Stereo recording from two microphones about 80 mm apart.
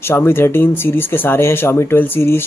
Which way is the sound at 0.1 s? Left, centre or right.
Left.